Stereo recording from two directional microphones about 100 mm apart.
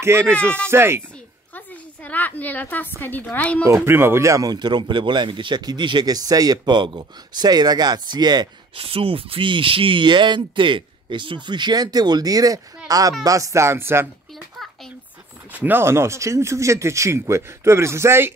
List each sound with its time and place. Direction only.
0.0 s speech: 25° right (ahead or behind)
1.5 s a sound: 15° left (ahead or behind)
3.0 s a woman's voice: 20° left (ahead or behind)
3.6 s speech: 25° right (ahead or behind); by 8.5 s 45° right (ahead or behind)
8.7 s speech: 70° right (ahead or behind); by 14.0 s 25° right (ahead or behind)
15.5 s speech: 20° right (ahead or behind)